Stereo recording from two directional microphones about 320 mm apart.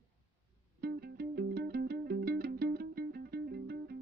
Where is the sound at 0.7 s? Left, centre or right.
Right.